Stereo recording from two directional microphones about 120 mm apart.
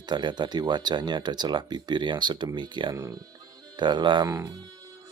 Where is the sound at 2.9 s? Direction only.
30° right (ahead or behind).